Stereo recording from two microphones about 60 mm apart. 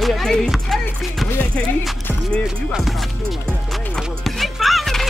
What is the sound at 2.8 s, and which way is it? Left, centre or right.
Music, centre.